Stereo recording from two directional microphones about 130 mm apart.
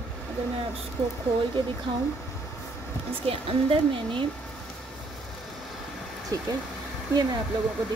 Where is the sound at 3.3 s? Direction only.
45° right (ahead or behind).